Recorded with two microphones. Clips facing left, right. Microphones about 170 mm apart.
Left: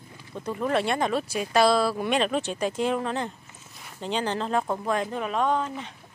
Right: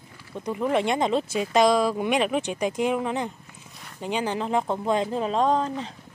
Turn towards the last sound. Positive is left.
turn(degrees=-35)  # may be behind; listen again after turning